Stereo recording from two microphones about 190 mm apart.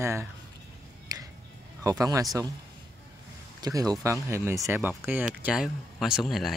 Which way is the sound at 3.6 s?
20° right (ahead or behind).